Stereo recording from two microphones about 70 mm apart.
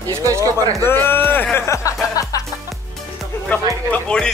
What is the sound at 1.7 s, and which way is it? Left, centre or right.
Speech, left.